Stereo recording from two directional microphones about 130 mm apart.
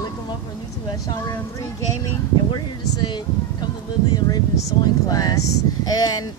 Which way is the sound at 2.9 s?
35° left (ahead or behind).